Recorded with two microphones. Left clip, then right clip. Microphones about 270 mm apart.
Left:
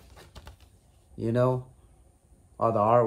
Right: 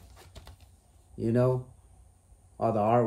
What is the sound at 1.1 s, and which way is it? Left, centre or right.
Speech, centre.